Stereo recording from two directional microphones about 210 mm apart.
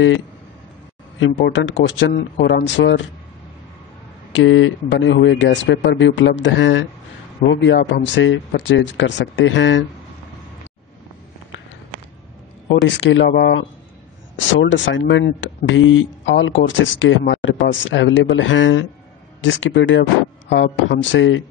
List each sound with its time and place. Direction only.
1.2 s speech: 60° left (ahead or behind)
4.3 s speech: 65° left (ahead or behind)
12.8 s speech: 65° left (ahead or behind)